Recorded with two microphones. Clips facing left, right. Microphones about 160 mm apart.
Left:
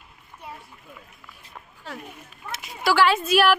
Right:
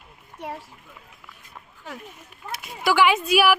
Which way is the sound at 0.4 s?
90° right.